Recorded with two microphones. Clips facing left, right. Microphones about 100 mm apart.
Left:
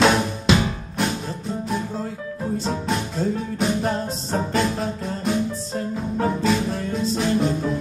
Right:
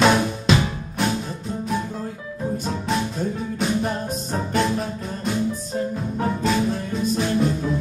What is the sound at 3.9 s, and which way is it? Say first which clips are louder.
Music: left 1 dB; 25° left (ahead or behind).